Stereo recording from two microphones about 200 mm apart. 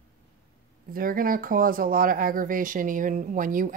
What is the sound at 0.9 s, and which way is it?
Speech, 45° right (ahead or behind).